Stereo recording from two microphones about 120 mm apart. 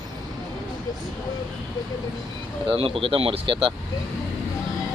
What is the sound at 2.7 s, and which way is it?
Speech, 50° right (ahead or behind).